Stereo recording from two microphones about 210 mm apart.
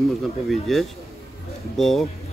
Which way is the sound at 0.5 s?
Centre (ahead or behind).